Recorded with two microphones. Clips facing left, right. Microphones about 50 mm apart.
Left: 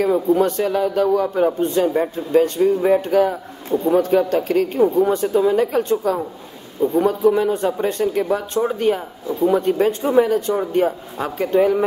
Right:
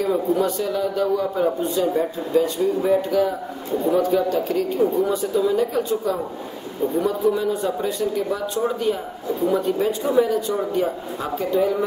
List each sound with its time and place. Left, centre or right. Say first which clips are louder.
0.3 s a man's voice: left 4 dB; left